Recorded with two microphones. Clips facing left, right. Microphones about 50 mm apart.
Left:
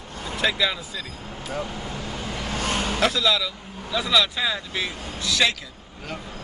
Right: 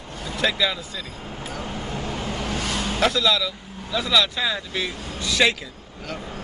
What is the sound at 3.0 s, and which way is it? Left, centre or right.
Speech, centre.